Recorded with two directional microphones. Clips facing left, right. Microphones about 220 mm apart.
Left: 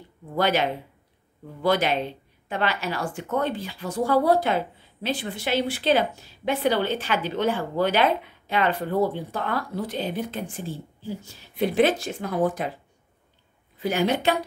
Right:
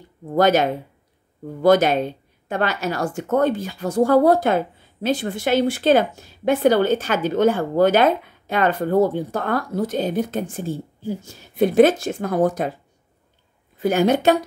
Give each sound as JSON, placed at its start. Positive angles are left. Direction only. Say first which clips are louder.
{"t": 0.3, "sound": "a woman's voice", "louder": "right 6 dB", "side_deg": -45}
{"t": 13.7, "sound": "a woman's voice", "louder": "right 6 dB", "side_deg": -45}